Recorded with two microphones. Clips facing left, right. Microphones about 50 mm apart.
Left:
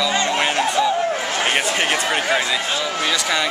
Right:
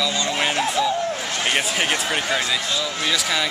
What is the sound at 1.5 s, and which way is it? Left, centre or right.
Speech, centre.